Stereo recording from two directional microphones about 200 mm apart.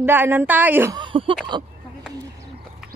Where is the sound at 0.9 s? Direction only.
25° right (ahead or behind).